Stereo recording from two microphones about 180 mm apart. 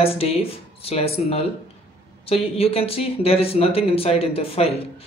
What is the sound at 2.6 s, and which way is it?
Speech, 35° left (ahead or behind).